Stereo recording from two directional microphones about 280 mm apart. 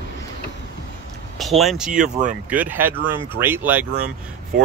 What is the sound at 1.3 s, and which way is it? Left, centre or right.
Speech, centre.